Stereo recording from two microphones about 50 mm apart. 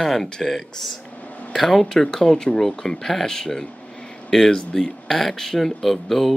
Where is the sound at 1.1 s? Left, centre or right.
Left.